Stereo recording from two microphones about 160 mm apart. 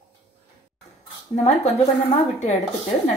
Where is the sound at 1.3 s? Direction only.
45° left (ahead or behind).